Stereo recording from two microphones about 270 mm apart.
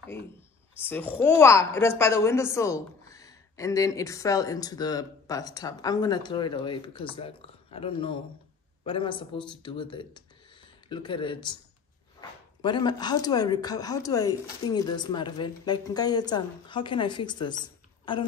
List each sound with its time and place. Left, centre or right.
0.7 s a woman's voice: centre